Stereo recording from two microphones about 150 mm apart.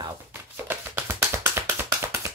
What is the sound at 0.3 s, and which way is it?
Tap, 15° right (ahead or behind).